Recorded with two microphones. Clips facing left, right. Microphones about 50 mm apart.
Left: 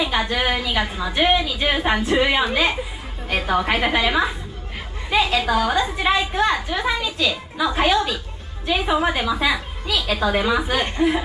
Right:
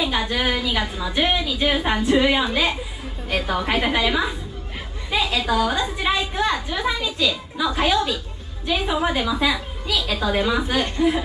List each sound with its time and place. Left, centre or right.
0.0 s a woman's voice: centre